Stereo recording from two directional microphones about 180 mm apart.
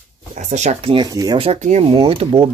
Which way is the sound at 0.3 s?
40° right (ahead or behind).